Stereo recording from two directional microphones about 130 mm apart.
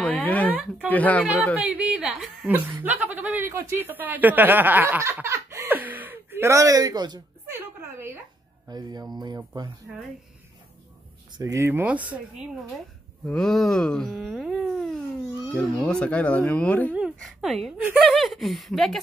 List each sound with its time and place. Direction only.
0.0 s a sound: 10° left (ahead or behind)
0.8 s speech: 10° left (ahead or behind)
1.2 s a woman's voice: 10° right (ahead or behind); by 7.2 s 30° right (ahead or behind)
7.4 s a sound: 20° right (ahead or behind)
8.6 s speech: 30° right (ahead or behind)
11.3 s a woman's voice: 25° right (ahead or behind)
13.3 s speech: 5° left (ahead or behind)
17.2 s speech: centre (ahead or behind)
17.7 s a woman's voice: 10° right (ahead or behind)
18.1 s speech: centre (ahead or behind)